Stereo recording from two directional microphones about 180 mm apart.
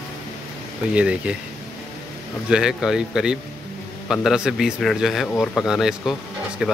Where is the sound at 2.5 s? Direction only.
5° right (ahead or behind).